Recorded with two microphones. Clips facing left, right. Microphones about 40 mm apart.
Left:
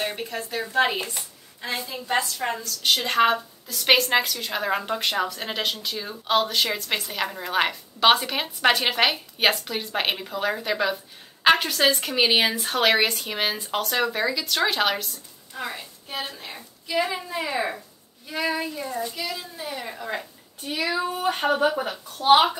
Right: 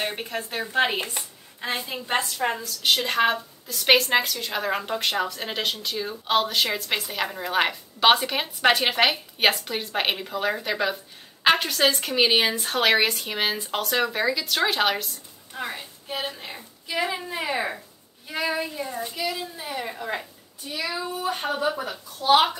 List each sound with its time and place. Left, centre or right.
0.0 s a woman's voice: right
0.9 s a sound: right
1.9 s a woman's voice: right
2.3 s a woman's voice: centre
17.0 s a woman's voice: centre
17.3 s a woman's voice: centre
17.6 s a woman's voice: centre
18.3 s a woman's voice: centre
19.1 s a woman's voice: centre
20.6 s speech: left
22.3 s a child's voice: centre